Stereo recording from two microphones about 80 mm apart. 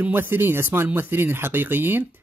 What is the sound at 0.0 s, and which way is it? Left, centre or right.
Speech, right.